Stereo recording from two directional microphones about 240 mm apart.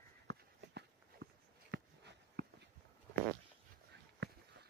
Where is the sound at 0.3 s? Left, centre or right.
Right.